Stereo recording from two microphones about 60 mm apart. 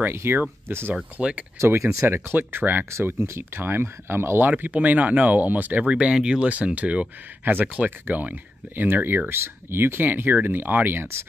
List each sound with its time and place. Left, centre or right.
0.0 s speech: right
1.1 s speech: right
1.6 s speech: right
4.5 s speech: right
5.9 s speech: centre; by 11.2 s right